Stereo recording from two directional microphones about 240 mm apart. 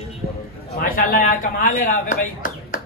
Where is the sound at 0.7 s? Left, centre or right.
Left.